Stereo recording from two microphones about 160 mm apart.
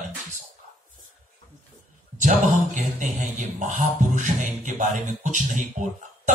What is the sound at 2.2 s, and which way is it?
Speech, 50° right (ahead or behind).